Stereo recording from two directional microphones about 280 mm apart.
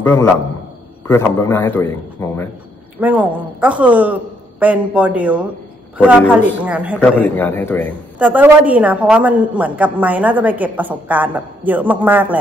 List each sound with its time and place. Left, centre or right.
0.0 s a man's voice: centre
3.0 s a woman's voice: centre
7.0 s a man's voice: centre
8.2 s a woman's voice: centre